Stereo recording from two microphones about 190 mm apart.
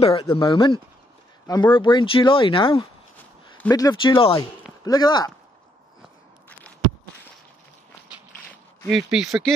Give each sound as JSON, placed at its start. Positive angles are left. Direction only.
{"t": 0.0, "sound": "speech", "side_deg": 30}
{"t": 3.5, "sound": "speech", "side_deg": 15}
{"t": 8.5, "sound": "speech", "side_deg": 0}